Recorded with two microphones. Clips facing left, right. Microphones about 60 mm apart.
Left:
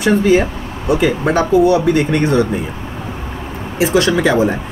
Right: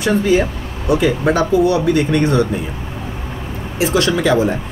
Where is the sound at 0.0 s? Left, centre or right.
Centre.